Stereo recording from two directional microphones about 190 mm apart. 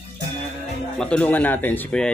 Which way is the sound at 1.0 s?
5° left (ahead or behind).